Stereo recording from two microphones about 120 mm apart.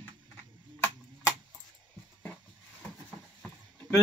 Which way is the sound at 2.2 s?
15° left (ahead or behind).